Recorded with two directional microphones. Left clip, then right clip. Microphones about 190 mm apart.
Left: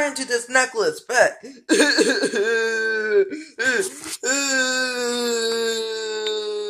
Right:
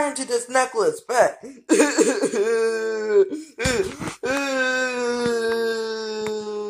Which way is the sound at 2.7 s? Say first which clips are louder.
Even; 15° right (ahead or behind).